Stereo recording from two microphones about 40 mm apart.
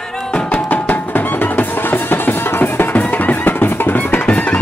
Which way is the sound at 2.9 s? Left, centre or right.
Left.